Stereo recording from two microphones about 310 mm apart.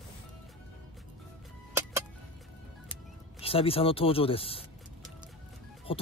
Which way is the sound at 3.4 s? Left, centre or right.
Centre.